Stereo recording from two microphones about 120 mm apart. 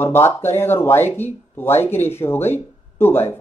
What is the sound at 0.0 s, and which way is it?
Speech, 20° left (ahead or behind).